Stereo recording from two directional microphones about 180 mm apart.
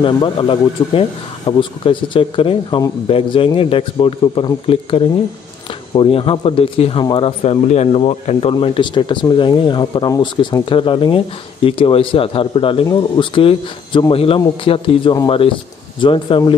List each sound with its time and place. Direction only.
0.0 s speech: 30° left (ahead or behind)